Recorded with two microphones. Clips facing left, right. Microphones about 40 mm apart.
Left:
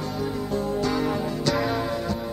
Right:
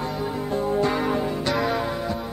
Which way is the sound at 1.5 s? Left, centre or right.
Centre.